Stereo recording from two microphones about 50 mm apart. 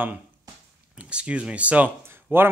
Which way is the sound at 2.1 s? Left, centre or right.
Right.